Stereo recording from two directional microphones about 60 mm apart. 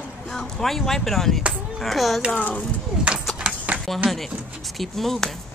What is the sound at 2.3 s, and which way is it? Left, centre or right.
Speech, left.